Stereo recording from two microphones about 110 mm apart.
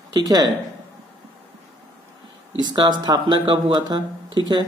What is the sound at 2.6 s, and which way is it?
Speech, 40° right (ahead or behind).